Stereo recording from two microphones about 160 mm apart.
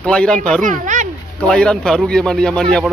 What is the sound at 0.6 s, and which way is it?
Speech, 50° right (ahead or behind).